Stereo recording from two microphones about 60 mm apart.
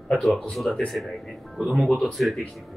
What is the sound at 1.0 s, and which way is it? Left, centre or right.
Speech, centre.